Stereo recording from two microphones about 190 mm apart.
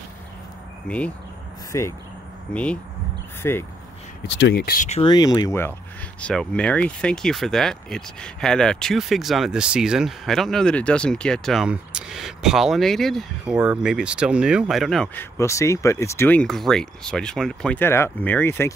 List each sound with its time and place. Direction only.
0.8 s speech: 5° left (ahead or behind)
4.3 s speech: 65° left (ahead or behind)
4.8 s speech: 35° left (ahead or behind)
5.1 s speech: 20° left (ahead or behind); by 15.2 s centre (ahead or behind)
15.3 s speech: 15° left (ahead or behind)